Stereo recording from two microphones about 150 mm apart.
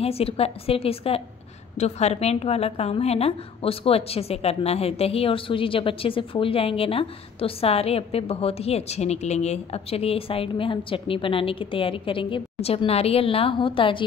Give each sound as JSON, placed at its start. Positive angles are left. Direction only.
{"t": 0.0, "sound": "a woman's voice", "side_deg": 40}